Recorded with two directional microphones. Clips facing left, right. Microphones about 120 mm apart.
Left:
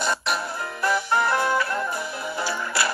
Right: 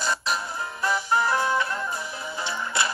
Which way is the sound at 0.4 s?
20° right (ahead or behind).